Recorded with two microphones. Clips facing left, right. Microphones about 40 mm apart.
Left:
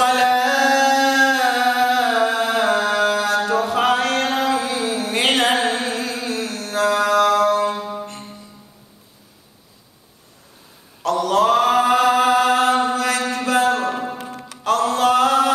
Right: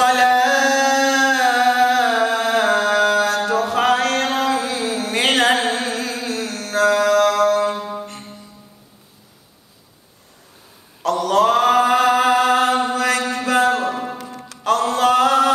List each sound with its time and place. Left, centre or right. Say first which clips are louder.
0.0 s music: right 2 dB; centre
6.9 s mantra: even; centre
7.5 s music: right 1 dB; centre
11.1 s chant: even; centre
13.0 s mantra: right 1 dB; centre
14.1 s music: left 1 dB; left
14.4 s music: right 1 dB; centre